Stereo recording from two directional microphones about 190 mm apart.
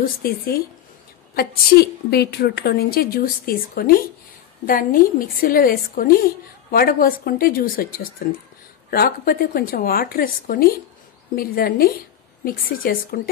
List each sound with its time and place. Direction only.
0.0 s a woman's voice: 50° left (ahead or behind)